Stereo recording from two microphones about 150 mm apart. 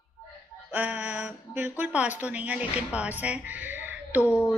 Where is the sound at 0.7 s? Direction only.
10° right (ahead or behind).